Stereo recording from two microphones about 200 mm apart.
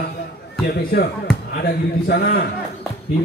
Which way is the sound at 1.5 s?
55° left (ahead or behind).